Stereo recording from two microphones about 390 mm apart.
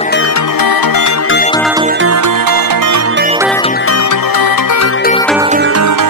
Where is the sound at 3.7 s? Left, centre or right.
Left.